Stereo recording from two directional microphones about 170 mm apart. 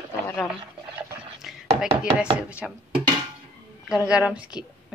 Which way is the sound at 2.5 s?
5° right (ahead or behind).